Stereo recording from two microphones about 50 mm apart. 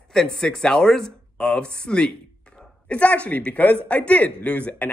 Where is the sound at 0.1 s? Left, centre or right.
Centre.